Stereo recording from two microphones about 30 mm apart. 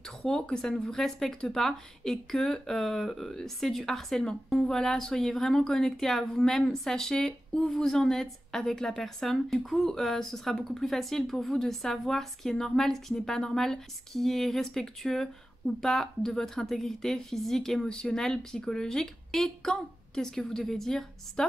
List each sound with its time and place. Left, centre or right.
0.3 s speech: left
17.7 s speech: left
18.1 s a woman's voice: left